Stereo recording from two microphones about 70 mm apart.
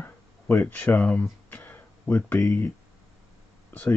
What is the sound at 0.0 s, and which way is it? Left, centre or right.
Speech, left.